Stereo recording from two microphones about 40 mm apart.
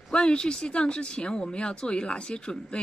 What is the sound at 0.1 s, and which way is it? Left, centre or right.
Speech, left.